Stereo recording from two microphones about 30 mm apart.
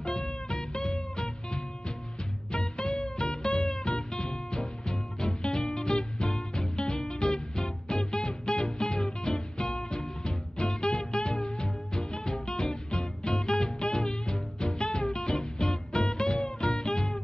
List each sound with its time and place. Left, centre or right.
0.0 s music: left